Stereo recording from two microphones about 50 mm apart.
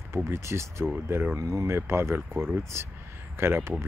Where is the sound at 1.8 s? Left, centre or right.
Right.